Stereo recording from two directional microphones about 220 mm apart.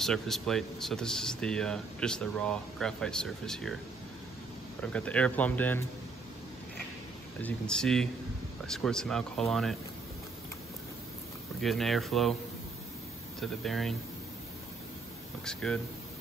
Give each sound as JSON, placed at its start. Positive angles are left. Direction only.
{"t": 0.0, "sound": "speech", "side_deg": 0}
{"t": 4.8, "sound": "speech", "side_deg": 5}
{"t": 7.4, "sound": "speech", "side_deg": 5}
{"t": 11.6, "sound": "speech", "side_deg": 0}
{"t": 13.4, "sound": "speech", "side_deg": 0}
{"t": 15.4, "sound": "speech", "side_deg": 5}